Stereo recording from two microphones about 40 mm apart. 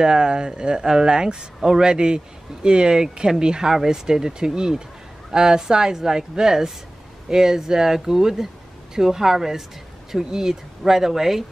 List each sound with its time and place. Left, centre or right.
0.0 s a man's voice: centre